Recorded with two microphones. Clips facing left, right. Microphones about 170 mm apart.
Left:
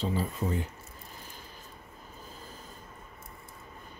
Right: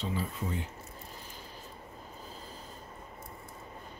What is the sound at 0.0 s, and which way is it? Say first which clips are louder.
Speech: left 4 dB; 40° left (ahead or behind).